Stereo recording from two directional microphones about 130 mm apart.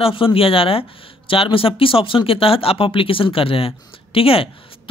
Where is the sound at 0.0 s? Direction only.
45° left (ahead or behind).